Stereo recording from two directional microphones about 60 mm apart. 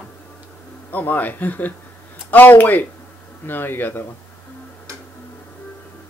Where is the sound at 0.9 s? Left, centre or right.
Left.